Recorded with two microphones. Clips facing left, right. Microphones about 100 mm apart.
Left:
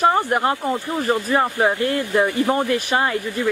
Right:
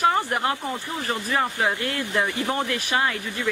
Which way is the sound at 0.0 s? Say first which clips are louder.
Left 4 dB; 25° left (ahead or behind).